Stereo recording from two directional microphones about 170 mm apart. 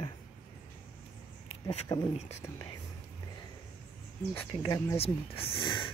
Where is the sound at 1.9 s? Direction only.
30° left (ahead or behind).